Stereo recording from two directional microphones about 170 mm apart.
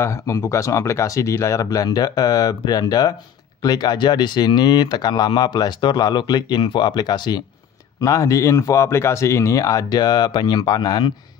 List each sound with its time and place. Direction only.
0.0 s speech: 15° left (ahead or behind)